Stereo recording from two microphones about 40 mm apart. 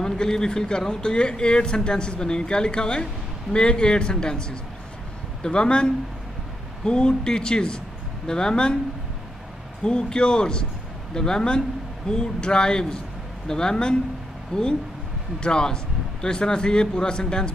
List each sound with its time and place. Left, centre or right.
0.0 s speech: centre
9.8 s speech: left